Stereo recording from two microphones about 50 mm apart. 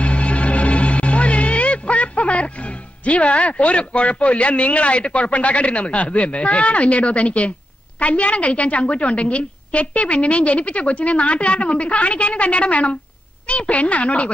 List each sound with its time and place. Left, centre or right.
0.0 s music: left
8.0 s a woman's voice: left